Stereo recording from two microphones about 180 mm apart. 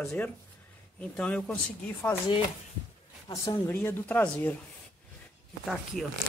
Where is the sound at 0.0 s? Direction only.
5° left (ahead or behind).